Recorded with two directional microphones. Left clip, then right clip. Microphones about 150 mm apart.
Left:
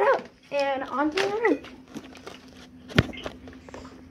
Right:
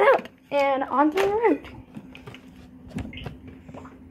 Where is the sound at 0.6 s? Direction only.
5° right (ahead or behind).